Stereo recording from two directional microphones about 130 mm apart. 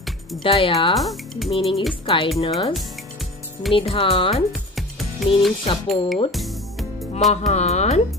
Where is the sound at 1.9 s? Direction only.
45° left (ahead or behind).